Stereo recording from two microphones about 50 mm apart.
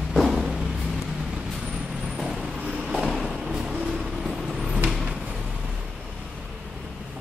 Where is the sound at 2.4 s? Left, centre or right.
Centre.